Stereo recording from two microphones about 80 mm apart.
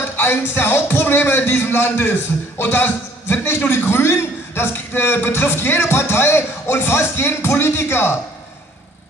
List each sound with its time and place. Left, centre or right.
0.0 s music: left
2.6 s a man's voice: left